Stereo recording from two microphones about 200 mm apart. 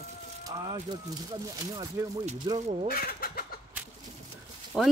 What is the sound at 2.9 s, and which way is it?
Speech, 50° left (ahead or behind).